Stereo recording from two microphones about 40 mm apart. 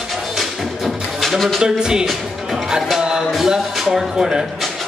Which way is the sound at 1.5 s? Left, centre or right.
Centre.